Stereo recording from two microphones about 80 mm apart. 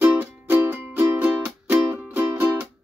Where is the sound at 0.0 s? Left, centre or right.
Right.